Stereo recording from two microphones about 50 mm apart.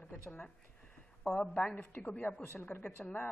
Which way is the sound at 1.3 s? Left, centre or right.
Left.